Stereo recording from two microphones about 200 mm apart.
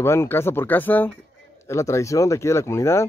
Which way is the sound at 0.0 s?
15° left (ahead or behind).